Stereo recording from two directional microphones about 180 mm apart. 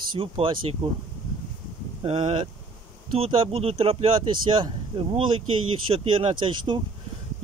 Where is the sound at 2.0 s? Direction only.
30° right (ahead or behind).